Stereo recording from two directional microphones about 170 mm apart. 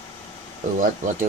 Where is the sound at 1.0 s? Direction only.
50° right (ahead or behind).